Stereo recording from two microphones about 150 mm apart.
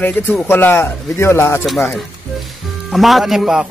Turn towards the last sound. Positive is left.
turn(degrees=-5)  # may be behind; listen again after turning